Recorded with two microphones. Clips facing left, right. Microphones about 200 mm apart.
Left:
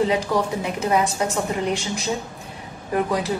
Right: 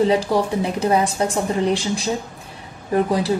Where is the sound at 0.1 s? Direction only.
30° right (ahead or behind).